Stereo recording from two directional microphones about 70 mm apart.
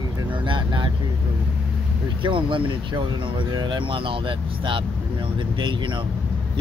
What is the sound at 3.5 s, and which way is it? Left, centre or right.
Speech, right.